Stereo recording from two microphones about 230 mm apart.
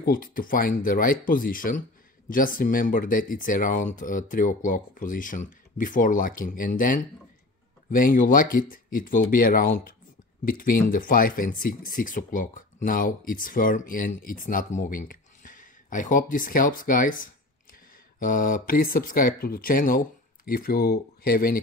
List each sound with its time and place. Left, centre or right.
0.0 s speech: left